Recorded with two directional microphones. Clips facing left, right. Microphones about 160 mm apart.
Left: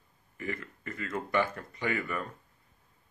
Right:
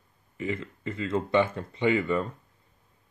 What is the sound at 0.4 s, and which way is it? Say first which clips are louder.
Speech: right 6 dB; 20° right (ahead or behind).